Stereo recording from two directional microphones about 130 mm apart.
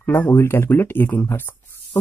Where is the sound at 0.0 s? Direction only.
15° left (ahead or behind).